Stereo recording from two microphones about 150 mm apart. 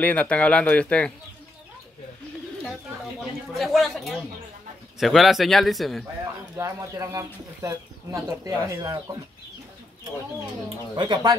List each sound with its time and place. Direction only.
0.0 s speech: 10° left (ahead or behind)
3.2 s speech: centre (ahead or behind)
6.5 s speech: 20° right (ahead or behind)
11.0 s speech: 30° right (ahead or behind)